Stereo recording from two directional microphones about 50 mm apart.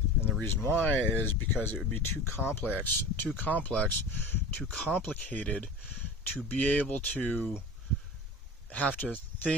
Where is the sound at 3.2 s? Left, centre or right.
Left.